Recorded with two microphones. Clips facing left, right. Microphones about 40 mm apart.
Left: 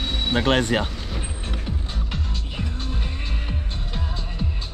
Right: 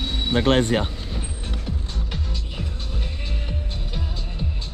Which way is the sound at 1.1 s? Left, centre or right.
Left.